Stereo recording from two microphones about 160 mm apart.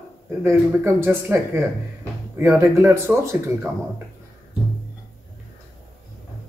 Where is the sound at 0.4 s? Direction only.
15° right (ahead or behind).